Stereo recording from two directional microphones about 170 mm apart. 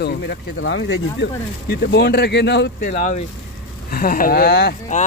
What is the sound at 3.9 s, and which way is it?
Speech, 55° left (ahead or behind).